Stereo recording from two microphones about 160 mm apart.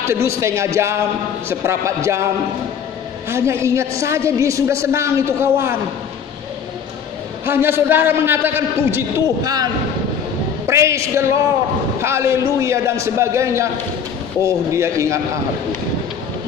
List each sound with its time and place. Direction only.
0.0 s a woman's voice: 15° right (ahead or behind)
3.3 s a woman's voice: 15° right (ahead or behind)
7.4 s a woman's voice: 15° right (ahead or behind)
10.7 s a woman's voice: 15° right (ahead or behind)